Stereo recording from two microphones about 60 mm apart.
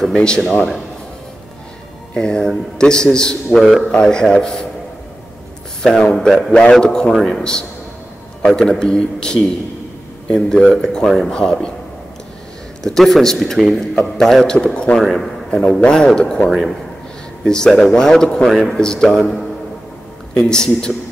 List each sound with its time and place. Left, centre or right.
0.0 s a man's voice: centre
2.1 s a man's voice: centre
5.8 s speech: centre
6.5 s a man's voice: centre
12.8 s a man's voice: centre
15.0 s a man's voice: centre
15.6 s a man's voice: left
15.9 s a man's voice: centre
16.4 s speech: centre
17.5 s a man's voice: centre
18.5 s speech: centre
18.8 s a man's voice: centre